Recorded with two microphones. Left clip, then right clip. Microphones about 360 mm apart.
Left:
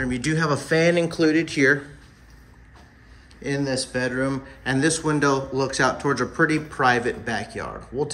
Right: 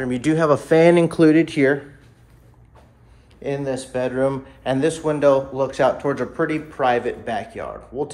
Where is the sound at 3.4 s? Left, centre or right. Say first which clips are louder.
Right 1 dB; centre.